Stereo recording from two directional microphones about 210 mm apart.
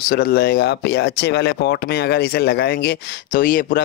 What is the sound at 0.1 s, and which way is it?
Speech, 50° left (ahead or behind).